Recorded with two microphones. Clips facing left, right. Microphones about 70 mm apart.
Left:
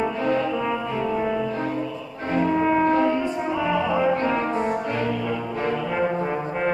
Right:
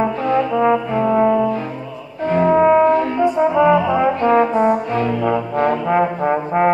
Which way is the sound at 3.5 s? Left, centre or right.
Right.